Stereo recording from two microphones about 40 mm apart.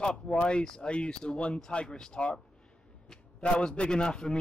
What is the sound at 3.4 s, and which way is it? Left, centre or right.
Speech, left.